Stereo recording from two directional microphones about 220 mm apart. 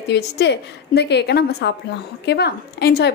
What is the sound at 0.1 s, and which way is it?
A woman's voice, 50° left (ahead or behind).